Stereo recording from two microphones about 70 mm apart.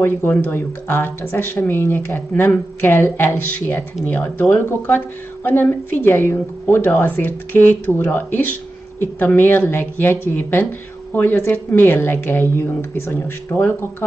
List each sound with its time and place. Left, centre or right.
0.0 s speech: left